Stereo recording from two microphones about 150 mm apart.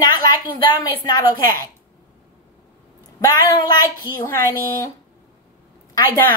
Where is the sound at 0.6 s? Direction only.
25° left (ahead or behind).